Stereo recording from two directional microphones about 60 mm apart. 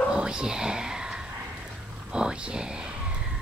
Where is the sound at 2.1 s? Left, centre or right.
Centre.